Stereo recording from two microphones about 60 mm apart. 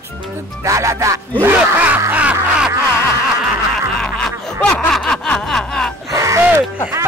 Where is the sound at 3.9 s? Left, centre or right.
Centre.